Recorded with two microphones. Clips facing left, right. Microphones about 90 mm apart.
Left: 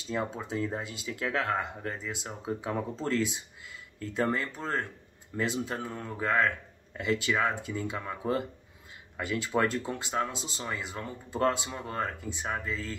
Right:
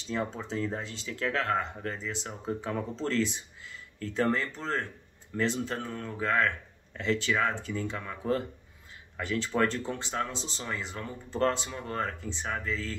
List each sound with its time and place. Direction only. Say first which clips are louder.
0.1 s speech: even; 10° left (ahead or behind)